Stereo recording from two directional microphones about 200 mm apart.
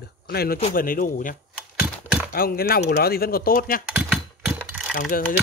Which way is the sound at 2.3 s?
50° left (ahead or behind).